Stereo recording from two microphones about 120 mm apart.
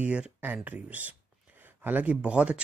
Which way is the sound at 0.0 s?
10° right (ahead or behind).